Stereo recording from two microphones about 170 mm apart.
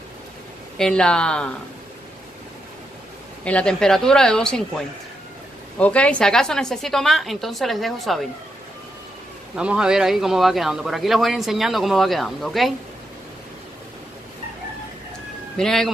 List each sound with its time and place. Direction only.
0.7 s a man's voice: 5° left (ahead or behind)
3.4 s a man's voice: 5° left (ahead or behind)
9.6 s a man's voice: 5° right (ahead or behind)
15.5 s speech: 5° left (ahead or behind)